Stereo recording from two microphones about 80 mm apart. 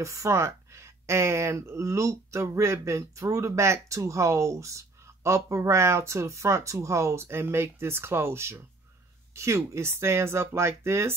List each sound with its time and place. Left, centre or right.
0.0 s speech: right